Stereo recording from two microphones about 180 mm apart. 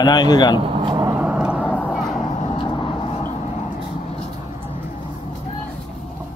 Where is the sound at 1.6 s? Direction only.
5° left (ahead or behind).